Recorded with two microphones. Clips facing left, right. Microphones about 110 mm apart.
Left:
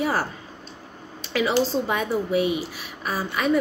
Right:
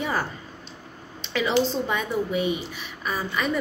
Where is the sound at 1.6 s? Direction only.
5° left (ahead or behind).